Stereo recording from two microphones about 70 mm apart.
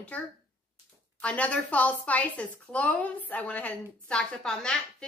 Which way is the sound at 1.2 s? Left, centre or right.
Centre.